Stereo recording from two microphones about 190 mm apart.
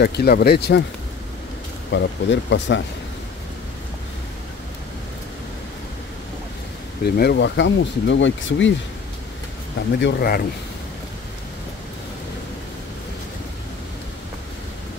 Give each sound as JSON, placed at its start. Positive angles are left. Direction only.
{"t": 0.0, "sound": "speech", "side_deg": 55}
{"t": 1.9, "sound": "speech", "side_deg": 70}
{"t": 7.2, "sound": "speech", "side_deg": 65}
{"t": 9.9, "sound": "speech", "side_deg": 60}